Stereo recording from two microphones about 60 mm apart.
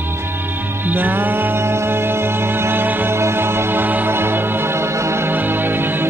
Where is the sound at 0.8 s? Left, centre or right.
Right.